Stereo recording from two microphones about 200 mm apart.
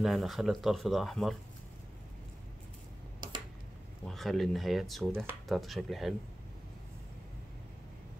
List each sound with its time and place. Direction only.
0.0 s speech: centre (ahead or behind)
3.2 s a sound: 20° right (ahead or behind)
4.1 s speech: centre (ahead or behind)